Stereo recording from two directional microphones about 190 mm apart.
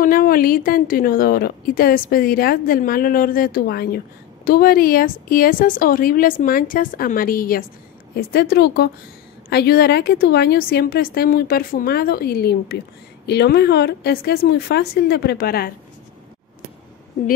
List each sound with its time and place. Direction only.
0.0 s a woman's voice: 50° left (ahead or behind)